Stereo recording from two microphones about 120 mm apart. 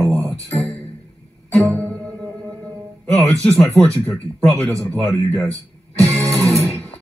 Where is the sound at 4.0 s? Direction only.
5° left (ahead or behind).